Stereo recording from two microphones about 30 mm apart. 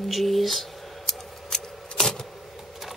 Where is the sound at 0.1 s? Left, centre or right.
Centre.